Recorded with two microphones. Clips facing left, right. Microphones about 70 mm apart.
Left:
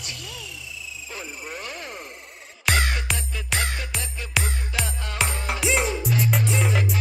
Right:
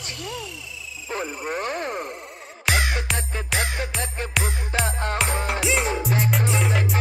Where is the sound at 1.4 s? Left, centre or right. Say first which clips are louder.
Right 9 dB; right.